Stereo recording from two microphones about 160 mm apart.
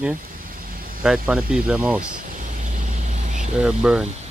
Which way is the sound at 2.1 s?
55° right (ahead or behind).